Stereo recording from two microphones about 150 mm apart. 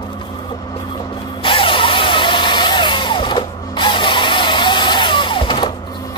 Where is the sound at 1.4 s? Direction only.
35° left (ahead or behind).